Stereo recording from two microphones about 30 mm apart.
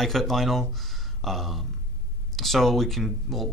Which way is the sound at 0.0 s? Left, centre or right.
Centre.